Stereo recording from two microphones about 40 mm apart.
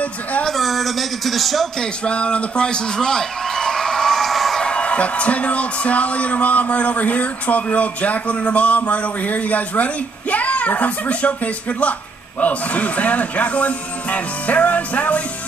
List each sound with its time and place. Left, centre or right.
0.5 s speech: centre
2.0 s a sound: left; by 4.6 s centre
4.6 s a man's voice: left